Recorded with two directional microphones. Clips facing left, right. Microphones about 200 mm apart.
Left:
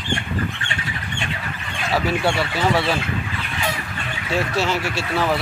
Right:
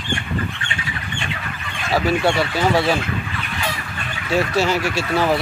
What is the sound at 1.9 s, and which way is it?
Speech, 20° right (ahead or behind).